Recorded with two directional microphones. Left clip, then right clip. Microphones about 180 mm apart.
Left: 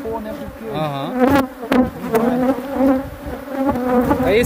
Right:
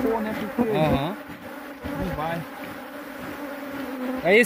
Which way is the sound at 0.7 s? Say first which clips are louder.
Left 1 dB; 15° left (ahead or behind).